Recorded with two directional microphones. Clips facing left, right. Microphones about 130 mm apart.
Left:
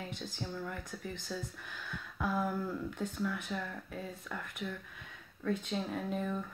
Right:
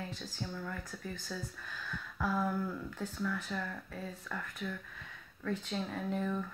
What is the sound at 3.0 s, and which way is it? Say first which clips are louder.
Speech: right 1 dB; 20° left (ahead or behind).